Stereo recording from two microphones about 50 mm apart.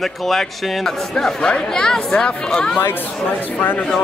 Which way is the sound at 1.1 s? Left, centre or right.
Centre.